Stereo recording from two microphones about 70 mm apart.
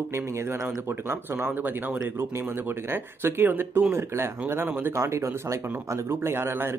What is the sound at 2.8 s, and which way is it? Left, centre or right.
Speech, right.